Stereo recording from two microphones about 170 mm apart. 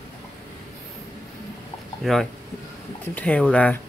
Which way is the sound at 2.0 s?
Centre (ahead or behind).